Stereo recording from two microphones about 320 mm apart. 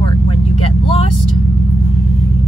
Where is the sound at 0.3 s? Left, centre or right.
Centre.